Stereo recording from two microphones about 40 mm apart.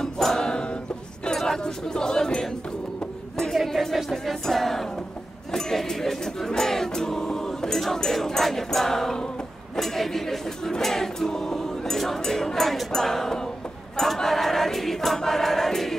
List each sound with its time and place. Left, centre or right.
0.0 s music: centre
0.4 s music: centre
1.3 s a sound: centre
3.5 s a sound: centre
3.9 s music: centre
13.9 s choir: centre